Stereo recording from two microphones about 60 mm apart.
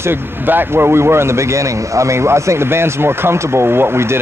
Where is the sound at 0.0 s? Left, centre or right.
Right.